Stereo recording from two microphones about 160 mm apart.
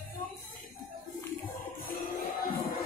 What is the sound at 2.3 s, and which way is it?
Music, 65° left (ahead or behind).